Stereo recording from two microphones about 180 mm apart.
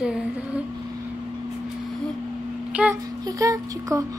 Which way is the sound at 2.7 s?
5° right (ahead or behind).